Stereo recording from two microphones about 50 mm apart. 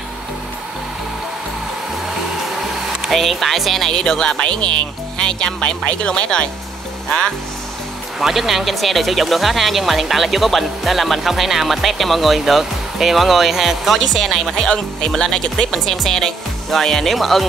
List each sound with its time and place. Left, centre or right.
3.1 s speech: centre
8.2 s speech: centre